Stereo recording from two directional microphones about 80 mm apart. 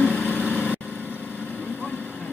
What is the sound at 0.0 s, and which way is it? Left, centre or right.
Vehicle, centre.